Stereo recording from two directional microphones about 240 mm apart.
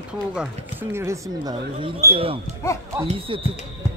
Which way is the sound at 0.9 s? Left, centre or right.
Centre.